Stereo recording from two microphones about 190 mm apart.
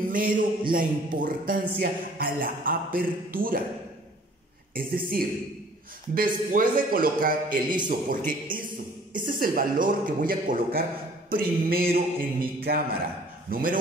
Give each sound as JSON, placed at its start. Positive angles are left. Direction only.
{"t": 0.1, "sound": "a man's voice", "side_deg": -50}
{"t": 4.7, "sound": "a man's voice", "side_deg": -50}
{"t": 7.6, "sound": "a man's voice", "side_deg": -25}
{"t": 8.3, "sound": "a man's voice", "side_deg": -45}